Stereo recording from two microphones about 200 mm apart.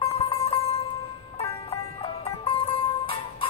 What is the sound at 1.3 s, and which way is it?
Music, 30° left (ahead or behind).